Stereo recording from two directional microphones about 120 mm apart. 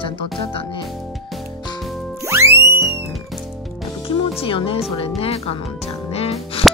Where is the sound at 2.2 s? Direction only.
20° right (ahead or behind).